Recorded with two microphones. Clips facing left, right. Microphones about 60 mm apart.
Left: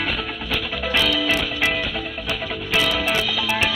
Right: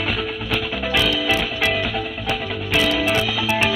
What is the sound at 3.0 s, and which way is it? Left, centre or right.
Music, centre.